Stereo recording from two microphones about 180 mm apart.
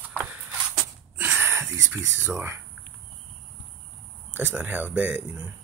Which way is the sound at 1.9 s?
10° right (ahead or behind).